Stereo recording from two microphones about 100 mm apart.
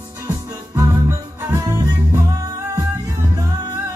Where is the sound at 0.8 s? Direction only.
30° right (ahead or behind).